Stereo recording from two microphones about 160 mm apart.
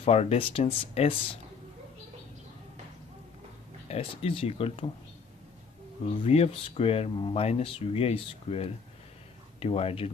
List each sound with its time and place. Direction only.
0.0 s speech: 40° left (ahead or behind)
3.9 s speech: 35° left (ahead or behind)
6.2 s speech: 40° left (ahead or behind)